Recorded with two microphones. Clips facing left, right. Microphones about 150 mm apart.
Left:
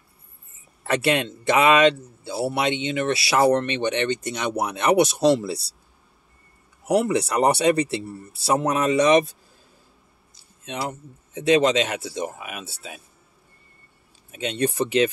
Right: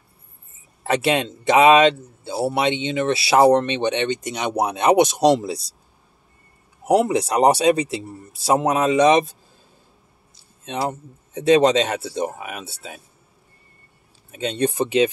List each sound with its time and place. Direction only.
0.8 s speech: 20° right (ahead or behind)
7.2 s speech: 20° right (ahead or behind)
10.7 s speech: 40° right (ahead or behind)
14.3 s speech: 35° right (ahead or behind)
14.7 s speech: 15° right (ahead or behind)